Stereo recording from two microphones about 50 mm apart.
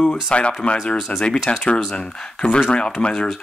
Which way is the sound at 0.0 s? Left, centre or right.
Centre.